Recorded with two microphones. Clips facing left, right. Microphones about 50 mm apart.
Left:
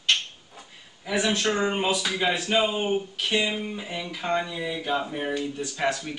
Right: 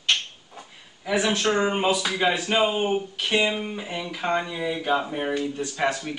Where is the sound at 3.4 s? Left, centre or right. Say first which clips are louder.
Right 3 dB; right.